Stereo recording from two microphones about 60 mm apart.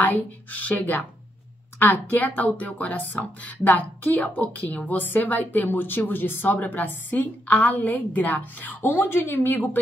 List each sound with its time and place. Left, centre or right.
0.0 s speech: left
8.8 s speech: left